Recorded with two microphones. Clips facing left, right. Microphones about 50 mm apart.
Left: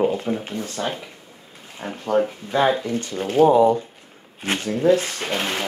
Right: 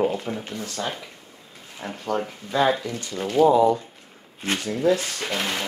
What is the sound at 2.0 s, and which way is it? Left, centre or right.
Speech, left.